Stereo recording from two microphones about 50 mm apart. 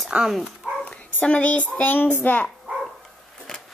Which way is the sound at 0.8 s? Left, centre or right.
Left.